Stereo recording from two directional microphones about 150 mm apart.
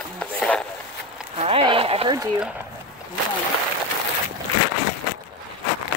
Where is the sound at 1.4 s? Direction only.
35° right (ahead or behind).